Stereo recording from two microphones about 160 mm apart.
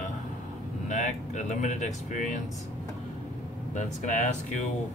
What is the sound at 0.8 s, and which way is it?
Speech, 50° left (ahead or behind).